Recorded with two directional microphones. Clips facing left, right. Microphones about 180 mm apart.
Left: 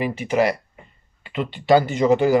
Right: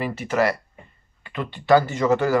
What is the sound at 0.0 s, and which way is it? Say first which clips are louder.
Speech: left 2 dB; 15° left (ahead or behind).